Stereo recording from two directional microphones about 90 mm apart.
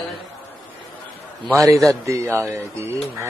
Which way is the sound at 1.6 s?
35° right (ahead or behind).